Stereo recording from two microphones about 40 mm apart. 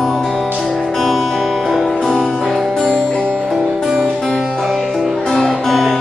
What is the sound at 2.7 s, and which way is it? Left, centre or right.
Music, centre.